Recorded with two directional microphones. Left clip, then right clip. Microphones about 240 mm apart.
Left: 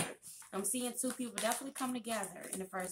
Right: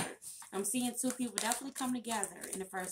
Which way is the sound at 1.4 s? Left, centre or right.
Right.